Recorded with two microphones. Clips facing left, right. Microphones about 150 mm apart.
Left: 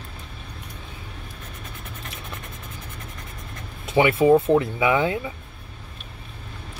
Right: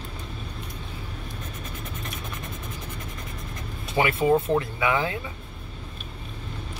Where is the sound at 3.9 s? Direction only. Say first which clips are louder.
Left 5 dB; 25° left (ahead or behind).